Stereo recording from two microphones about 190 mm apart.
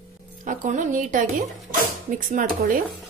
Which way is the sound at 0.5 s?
40° right (ahead or behind).